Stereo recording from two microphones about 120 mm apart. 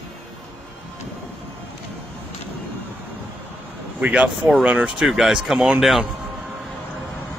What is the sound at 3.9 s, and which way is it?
Speech, 10° right (ahead or behind).